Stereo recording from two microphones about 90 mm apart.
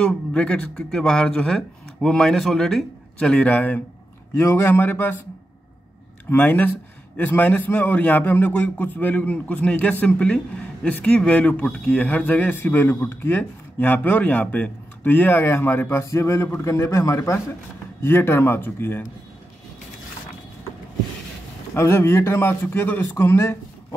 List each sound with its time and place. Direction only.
0.0 s speech: 10° left (ahead or behind)
4.4 s a man's voice: 30° left (ahead or behind)
6.3 s a man's voice: 20° left (ahead or behind)
21.7 s a man's voice: 30° left (ahead or behind)